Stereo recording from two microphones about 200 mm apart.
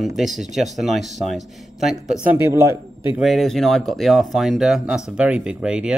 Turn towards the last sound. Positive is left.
turn(degrees=-5)  # may be behind; listen again after turning